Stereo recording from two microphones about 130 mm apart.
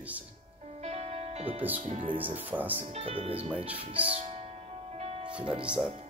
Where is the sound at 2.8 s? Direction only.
55° right (ahead or behind).